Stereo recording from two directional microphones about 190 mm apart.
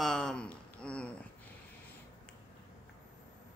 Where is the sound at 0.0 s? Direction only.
5° left (ahead or behind).